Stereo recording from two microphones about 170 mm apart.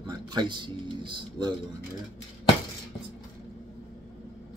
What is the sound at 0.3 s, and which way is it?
Speech, 25° right (ahead or behind).